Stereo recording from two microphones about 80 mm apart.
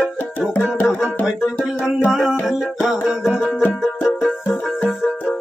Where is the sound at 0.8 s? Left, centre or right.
Centre.